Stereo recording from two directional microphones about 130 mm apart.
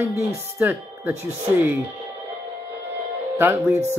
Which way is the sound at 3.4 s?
20° right (ahead or behind).